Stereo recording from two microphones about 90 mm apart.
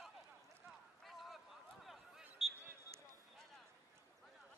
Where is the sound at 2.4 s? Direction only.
5° right (ahead or behind).